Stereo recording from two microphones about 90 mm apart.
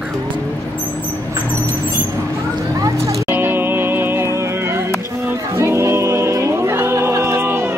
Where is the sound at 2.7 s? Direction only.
40° right (ahead or behind).